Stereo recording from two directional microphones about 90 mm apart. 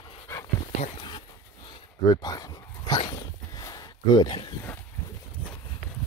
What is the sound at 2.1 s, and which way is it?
Dog, 45° left (ahead or behind).